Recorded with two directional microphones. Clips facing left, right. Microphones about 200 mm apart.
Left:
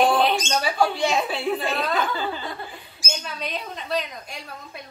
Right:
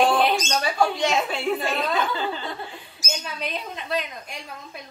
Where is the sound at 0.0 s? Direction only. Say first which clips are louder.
Even; centre (ahead or behind).